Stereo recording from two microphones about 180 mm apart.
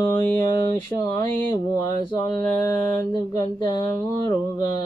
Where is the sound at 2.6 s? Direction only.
15° left (ahead or behind).